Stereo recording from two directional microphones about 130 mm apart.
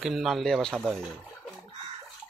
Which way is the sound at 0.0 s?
5° right (ahead or behind).